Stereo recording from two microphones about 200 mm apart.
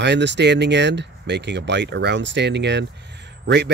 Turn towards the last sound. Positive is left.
turn(degrees=-60)  # may be behind; listen again after turning